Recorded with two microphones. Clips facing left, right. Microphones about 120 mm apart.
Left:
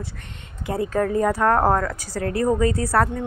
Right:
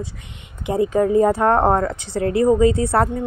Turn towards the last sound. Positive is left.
turn(degrees=-25)  # may be behind; listen again after turning